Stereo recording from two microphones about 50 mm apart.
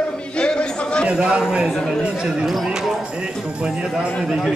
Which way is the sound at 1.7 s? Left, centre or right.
Centre.